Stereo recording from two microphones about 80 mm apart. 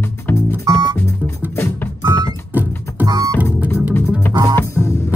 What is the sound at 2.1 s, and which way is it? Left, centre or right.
Music, right.